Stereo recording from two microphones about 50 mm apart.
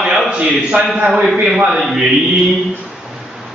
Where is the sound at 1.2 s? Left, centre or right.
Centre.